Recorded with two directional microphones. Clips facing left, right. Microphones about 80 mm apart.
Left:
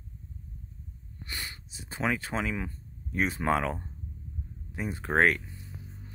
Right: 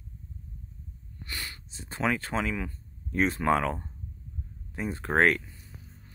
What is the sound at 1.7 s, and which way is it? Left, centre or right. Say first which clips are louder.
Speech: right 2 dB; centre.